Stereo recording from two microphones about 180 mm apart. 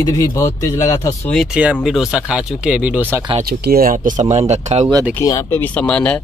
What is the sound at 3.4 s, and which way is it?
Speech, 60° right (ahead or behind).